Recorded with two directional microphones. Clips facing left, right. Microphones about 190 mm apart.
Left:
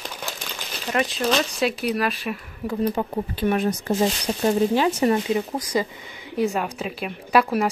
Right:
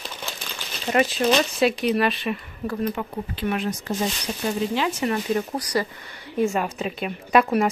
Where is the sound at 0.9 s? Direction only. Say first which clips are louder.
Right 2 dB; centre (ahead or behind).